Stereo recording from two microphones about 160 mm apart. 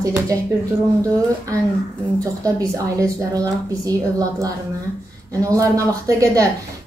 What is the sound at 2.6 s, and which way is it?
Speech, 20° right (ahead or behind).